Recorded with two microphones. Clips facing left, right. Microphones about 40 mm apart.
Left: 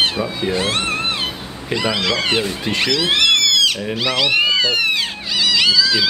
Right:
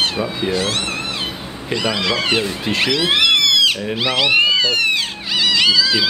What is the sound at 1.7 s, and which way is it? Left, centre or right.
Speech, centre.